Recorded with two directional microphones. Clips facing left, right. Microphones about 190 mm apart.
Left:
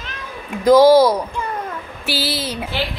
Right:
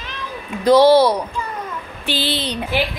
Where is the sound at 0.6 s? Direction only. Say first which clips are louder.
Left 1 dB; 10° left (ahead or behind).